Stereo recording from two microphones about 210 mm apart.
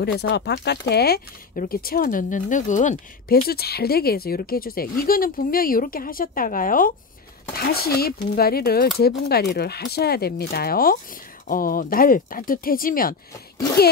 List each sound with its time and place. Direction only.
0.0 s speech: 50° left (ahead or behind)